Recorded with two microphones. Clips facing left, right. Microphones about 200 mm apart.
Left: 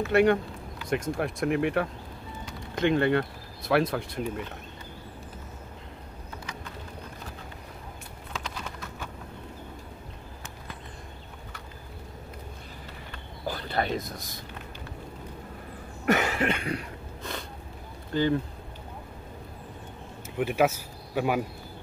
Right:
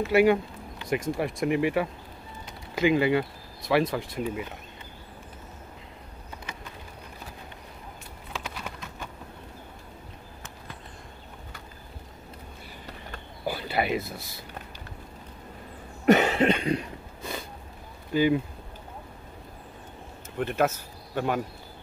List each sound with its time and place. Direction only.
0.1 s speech: 5° right (ahead or behind)
13.5 s a sound: 10° right (ahead or behind)
16.1 s cough: 25° right (ahead or behind)
17.2 s a sound: 5° right (ahead or behind)
18.1 s speech: 10° right (ahead or behind)
20.3 s speech: 10° left (ahead or behind)